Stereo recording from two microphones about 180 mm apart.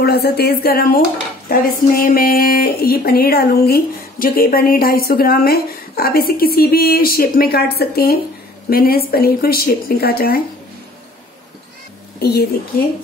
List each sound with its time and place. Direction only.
0.0 s speech: 60° left (ahead or behind)
12.2 s a woman's voice: 65° left (ahead or behind)